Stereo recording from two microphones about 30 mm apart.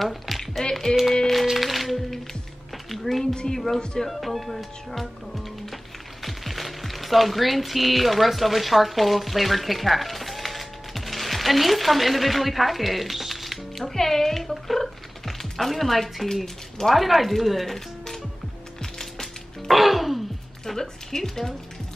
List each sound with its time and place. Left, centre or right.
0.0 s a sound: centre
0.4 s a sound: left
1.5 s music: centre
2.9 s a sound: centre
3.5 s music: centre
4.1 s speech: centre
13.9 s music: centre
16.9 s speech: centre
17.7 s music: centre
18.8 s gears: centre
19.7 s music: centre
20.6 s a woman's voice: centre